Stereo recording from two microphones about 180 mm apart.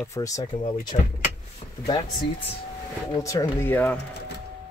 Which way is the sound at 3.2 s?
15° left (ahead or behind).